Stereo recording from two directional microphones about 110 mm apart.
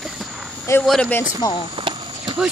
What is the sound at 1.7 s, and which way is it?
Clip-clop, 50° right (ahead or behind).